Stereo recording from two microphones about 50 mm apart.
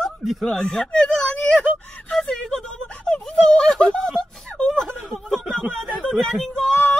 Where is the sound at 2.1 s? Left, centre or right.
Centre.